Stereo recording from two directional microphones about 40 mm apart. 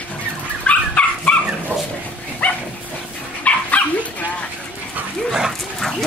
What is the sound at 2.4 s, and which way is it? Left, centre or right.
Dog, left.